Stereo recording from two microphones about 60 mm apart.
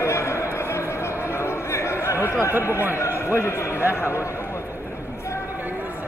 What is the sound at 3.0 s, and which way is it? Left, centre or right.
A man's voice, left.